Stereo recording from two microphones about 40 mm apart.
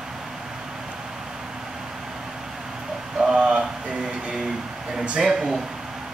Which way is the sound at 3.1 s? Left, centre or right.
Centre.